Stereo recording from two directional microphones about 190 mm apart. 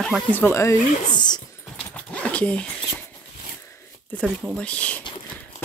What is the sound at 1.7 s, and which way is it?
Dog, 5° left (ahead or behind).